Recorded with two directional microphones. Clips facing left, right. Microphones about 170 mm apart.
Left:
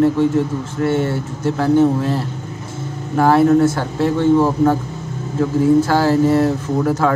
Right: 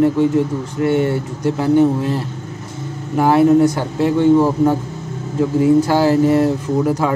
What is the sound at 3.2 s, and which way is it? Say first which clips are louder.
Speech: right 1 dB; 15° right (ahead or behind).